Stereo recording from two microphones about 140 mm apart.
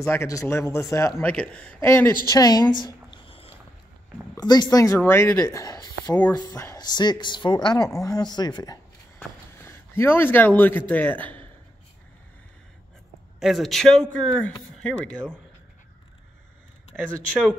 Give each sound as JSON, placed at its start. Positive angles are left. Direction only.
{"t": 0.0, "sound": "speech", "side_deg": 20}
{"t": 1.3, "sound": "speech", "side_deg": 10}
{"t": 1.8, "sound": "speech", "side_deg": 20}
{"t": 2.8, "sound": "a sound", "side_deg": 35}
{"t": 4.4, "sound": "speech", "side_deg": 30}
{"t": 9.7, "sound": "a man's voice", "side_deg": 15}
{"t": 13.4, "sound": "speech", "side_deg": 0}